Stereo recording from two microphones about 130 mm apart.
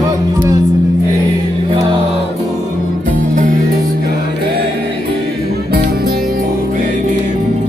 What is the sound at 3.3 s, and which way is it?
Music, 90° right.